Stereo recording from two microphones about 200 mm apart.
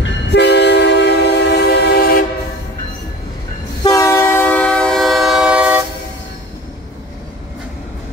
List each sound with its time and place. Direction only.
0.0 s train: 60° left (ahead or behind)
3.8 s train: 15° left (ahead or behind); by 5.9 s 5° right (ahead or behind)